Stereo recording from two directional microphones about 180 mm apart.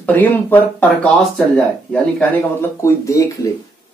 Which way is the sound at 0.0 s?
10° left (ahead or behind).